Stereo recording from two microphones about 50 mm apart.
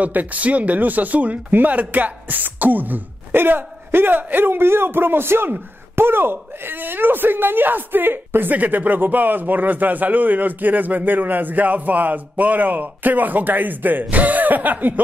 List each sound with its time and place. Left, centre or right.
0.0 s speech: right